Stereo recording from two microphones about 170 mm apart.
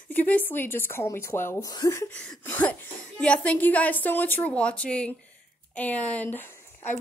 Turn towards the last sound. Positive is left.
turn(degrees=10)  # may be behind; listen again after turning